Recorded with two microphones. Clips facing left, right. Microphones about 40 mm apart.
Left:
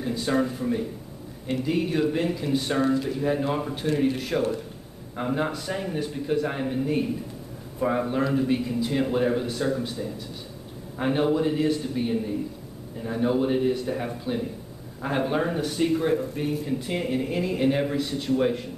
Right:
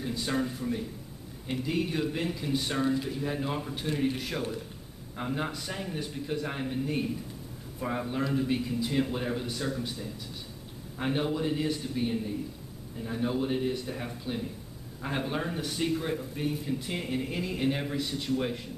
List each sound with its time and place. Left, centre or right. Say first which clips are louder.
0.0 s a sound: left 6 dB; centre
0.4 s speech: left 6 dB; centre
1.5 s speech: left 5 dB; centre
3.7 s speech: left 5 dB; centre
11.0 s speech: left 7 dB; centre
15.6 s speech: left 7 dB; centre